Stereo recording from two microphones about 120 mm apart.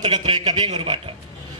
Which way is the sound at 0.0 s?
40° right (ahead or behind).